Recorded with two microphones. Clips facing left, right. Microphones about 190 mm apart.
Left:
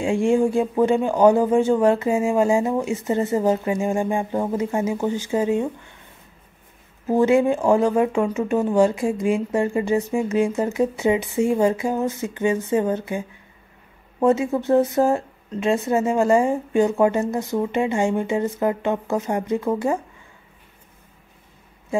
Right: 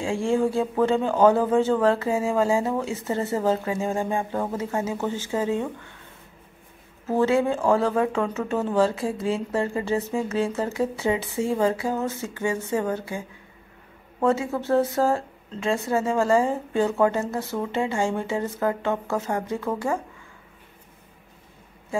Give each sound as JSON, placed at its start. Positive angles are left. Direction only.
{"t": 0.0, "sound": "speech", "side_deg": 20}
{"t": 7.1, "sound": "speech", "side_deg": 15}
{"t": 14.2, "sound": "speech", "side_deg": 15}